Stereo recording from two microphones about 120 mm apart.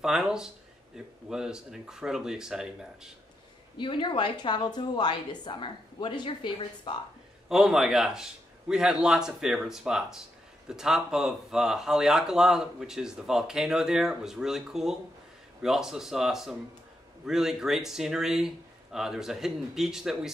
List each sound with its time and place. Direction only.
0.0 s speech: 5° right (ahead or behind)
3.7 s a woman's voice: 40° left (ahead or behind)
7.4 s speech: centre (ahead or behind)